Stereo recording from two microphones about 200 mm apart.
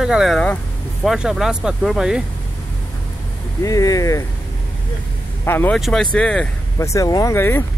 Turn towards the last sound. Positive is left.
turn(degrees=10)  # may be behind; listen again after turning